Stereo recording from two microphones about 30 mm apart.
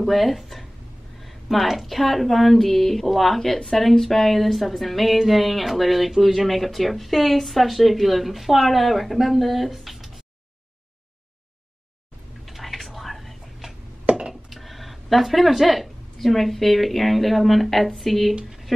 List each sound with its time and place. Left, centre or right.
0.0 s speech: centre
12.4 s whispering: centre
14.1 s a sound: right
14.5 s speech: centre